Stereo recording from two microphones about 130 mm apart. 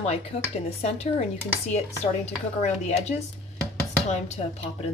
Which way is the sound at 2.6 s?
55° left (ahead or behind).